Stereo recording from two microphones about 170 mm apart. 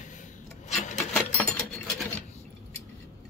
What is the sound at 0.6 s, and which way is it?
Rub, 45° left (ahead or behind).